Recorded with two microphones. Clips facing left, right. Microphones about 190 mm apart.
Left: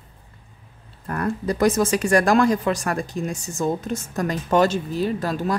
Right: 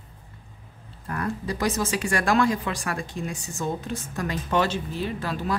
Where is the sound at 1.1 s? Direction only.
50° left (ahead or behind).